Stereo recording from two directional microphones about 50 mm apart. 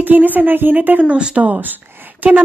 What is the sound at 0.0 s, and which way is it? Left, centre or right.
A woman's voice, right.